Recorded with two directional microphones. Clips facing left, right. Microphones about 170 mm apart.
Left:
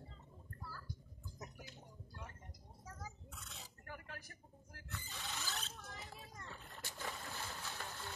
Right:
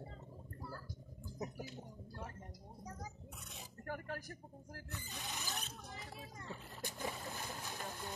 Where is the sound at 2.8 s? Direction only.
15° right (ahead or behind).